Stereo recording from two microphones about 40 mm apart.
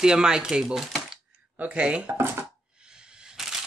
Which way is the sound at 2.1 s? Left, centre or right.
Right.